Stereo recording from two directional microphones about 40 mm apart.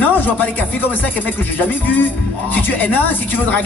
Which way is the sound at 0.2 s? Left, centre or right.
Left.